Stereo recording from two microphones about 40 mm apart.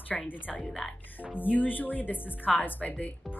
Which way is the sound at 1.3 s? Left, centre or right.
Left.